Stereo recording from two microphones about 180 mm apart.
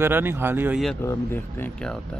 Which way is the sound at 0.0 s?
10° right (ahead or behind).